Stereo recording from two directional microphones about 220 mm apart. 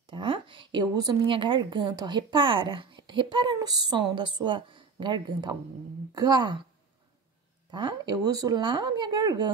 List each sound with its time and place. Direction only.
0.0 s a woman's voice: 25° right (ahead or behind)
7.7 s a woman's voice: 20° right (ahead or behind)